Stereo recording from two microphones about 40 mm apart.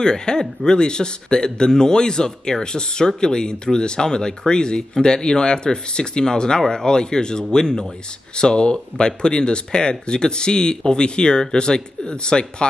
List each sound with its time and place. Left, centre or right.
0.0 s speech: centre